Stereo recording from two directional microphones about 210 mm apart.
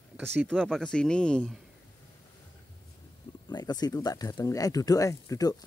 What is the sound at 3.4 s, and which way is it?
Speech, 20° left (ahead or behind).